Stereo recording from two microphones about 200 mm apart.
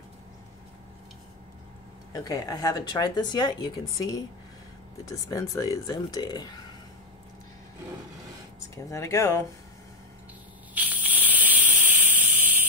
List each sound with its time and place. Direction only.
2.1 s speech: 20° left (ahead or behind)
5.0 s speech: 15° left (ahead or behind)
8.5 s speech: 15° left (ahead or behind)
10.7 s a sound: 10° right (ahead or behind)